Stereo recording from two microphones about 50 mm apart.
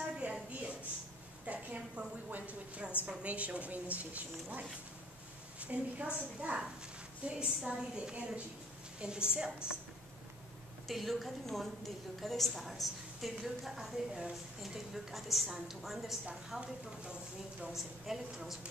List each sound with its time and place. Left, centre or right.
0.2 s a sound: right
1.4 s a woman's voice: right
10.9 s a woman's voice: centre
17.7 s a woman's voice: centre